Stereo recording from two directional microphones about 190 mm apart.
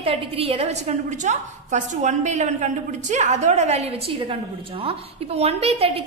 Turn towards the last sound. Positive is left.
turn(degrees=-30)  # may be behind; listen again after turning